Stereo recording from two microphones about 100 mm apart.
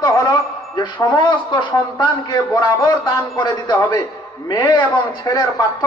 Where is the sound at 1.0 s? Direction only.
50° left (ahead or behind).